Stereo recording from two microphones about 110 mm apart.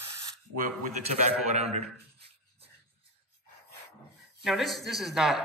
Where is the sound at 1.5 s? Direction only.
85° right.